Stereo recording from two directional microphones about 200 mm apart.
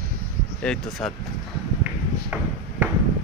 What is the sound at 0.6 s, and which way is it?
Speech, 5° left (ahead or behind).